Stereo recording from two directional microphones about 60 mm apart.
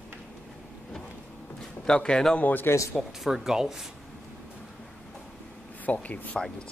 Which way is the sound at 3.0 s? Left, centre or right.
Centre.